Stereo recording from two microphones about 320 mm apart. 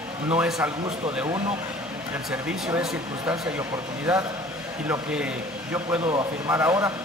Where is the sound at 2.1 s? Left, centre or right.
Centre.